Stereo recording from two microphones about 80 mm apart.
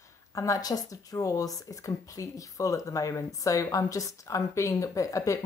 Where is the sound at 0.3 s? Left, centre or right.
Left.